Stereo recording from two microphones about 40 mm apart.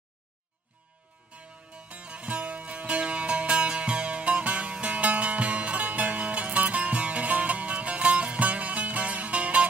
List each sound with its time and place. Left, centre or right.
1.3 s music: right